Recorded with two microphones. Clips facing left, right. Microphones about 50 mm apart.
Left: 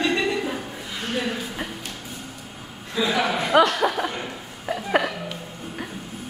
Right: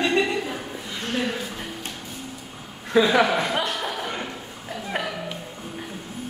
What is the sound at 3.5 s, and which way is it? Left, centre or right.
Chuckle, left.